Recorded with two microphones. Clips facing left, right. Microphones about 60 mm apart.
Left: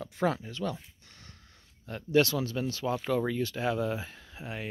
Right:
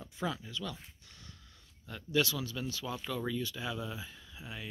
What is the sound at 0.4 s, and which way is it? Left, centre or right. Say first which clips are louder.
Speech: left 7 dB; left.